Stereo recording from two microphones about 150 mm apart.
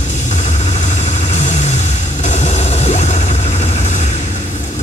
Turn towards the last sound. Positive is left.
turn(degrees=50)  # may be behind; listen again after turning